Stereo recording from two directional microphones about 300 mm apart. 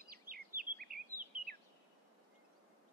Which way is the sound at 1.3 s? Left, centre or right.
Right.